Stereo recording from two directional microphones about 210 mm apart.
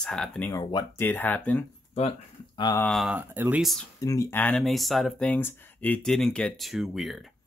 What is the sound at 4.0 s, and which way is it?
Speech, 15° left (ahead or behind).